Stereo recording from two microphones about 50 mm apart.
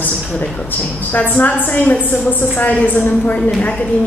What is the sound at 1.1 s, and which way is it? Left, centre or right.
A woman's voice, left.